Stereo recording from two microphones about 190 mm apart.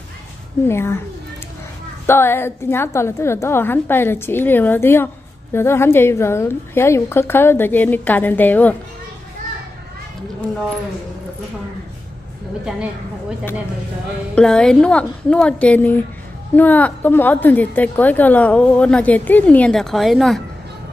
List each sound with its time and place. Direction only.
0.7 s a woman's voice: 15° left (ahead or behind)
2.0 s a woman's voice: 10° left (ahead or behind)
14.3 s a woman's voice: 5° left (ahead or behind)